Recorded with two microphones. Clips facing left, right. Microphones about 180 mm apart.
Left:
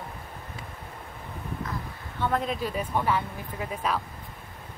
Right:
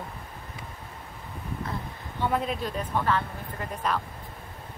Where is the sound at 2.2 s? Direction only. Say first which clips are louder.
Even; 5° right (ahead or behind).